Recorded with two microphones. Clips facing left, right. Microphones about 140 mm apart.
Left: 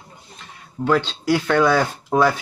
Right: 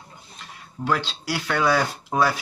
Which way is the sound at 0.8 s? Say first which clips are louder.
Left 6 dB; 10° right (ahead or behind).